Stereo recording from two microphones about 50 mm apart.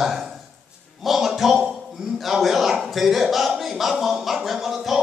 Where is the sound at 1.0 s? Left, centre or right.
Centre.